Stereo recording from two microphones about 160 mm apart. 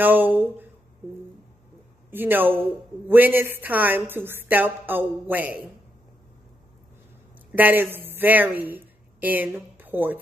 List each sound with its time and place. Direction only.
0.0 s a woman's voice: 10° right (ahead or behind)
2.0 s a man's voice: 10° right (ahead or behind)
7.5 s speech: 10° right (ahead or behind)